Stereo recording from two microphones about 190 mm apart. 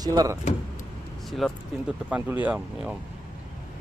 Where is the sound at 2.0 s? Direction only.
10° right (ahead or behind).